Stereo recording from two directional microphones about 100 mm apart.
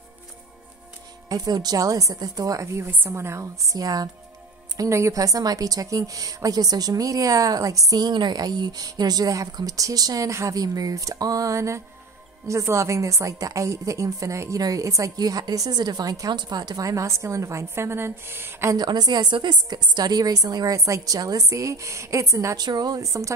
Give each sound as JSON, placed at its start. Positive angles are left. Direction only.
{"t": 1.3, "sound": "a woman's voice", "side_deg": -40}
{"t": 18.8, "sound": "a woman's voice", "side_deg": -45}
{"t": 22.6, "sound": "a woman's voice", "side_deg": -45}